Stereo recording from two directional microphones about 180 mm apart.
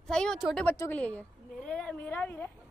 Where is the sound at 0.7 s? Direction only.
10° left (ahead or behind).